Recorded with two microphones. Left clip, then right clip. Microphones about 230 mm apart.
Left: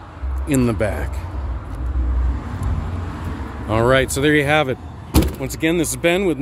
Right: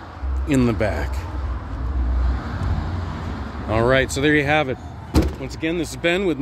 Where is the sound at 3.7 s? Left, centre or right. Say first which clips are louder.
Left 2 dB; centre.